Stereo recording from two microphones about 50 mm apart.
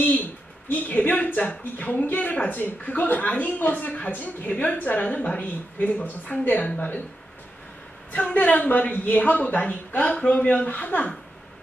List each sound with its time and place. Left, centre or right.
0.7 s a woman's voice: left
8.1 s a woman's voice: left